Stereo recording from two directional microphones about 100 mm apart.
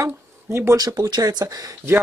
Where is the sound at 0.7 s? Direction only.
40° right (ahead or behind).